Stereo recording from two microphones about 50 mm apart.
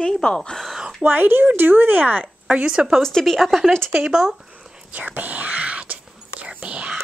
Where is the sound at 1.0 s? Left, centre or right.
Right.